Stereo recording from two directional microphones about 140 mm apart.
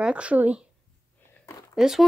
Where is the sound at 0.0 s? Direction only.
10° right (ahead or behind).